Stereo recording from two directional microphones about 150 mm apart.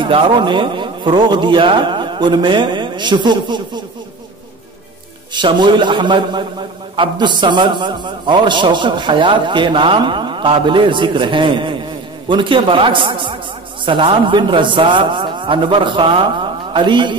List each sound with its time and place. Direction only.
0.0 s a man's voice: 35° right (ahead or behind)
5.3 s a man's voice: 30° right (ahead or behind)